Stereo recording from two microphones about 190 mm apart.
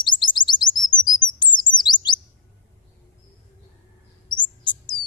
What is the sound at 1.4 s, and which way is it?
Chirp, 25° left (ahead or behind).